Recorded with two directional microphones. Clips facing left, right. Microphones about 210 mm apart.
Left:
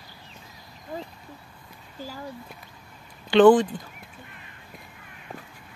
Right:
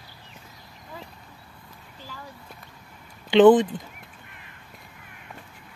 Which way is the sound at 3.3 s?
20° right (ahead or behind).